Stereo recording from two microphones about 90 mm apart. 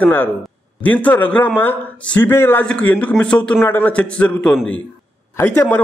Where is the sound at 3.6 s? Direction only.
25° left (ahead or behind).